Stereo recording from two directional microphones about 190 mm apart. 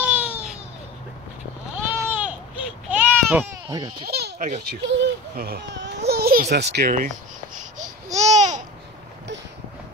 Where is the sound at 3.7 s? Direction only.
20° right (ahead or behind).